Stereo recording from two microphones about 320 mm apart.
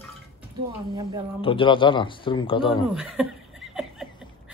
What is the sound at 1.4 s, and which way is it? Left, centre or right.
Speech, centre.